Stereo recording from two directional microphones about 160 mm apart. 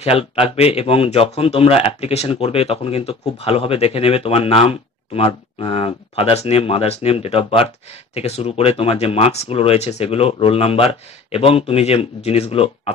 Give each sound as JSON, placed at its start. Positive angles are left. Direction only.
{"t": 0.0, "sound": "speech", "side_deg": 35}